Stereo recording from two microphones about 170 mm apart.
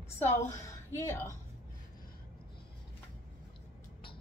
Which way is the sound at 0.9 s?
15° left (ahead or behind).